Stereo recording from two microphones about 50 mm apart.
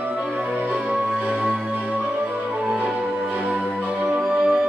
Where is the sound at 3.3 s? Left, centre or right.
Right.